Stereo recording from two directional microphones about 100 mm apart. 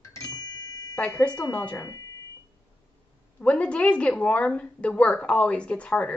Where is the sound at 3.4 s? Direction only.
10° left (ahead or behind).